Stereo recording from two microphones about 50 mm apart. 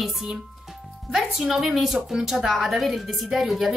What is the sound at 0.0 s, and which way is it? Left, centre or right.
A woman's voice, centre.